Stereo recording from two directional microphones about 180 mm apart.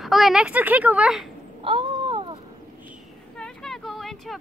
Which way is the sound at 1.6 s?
30° right (ahead or behind).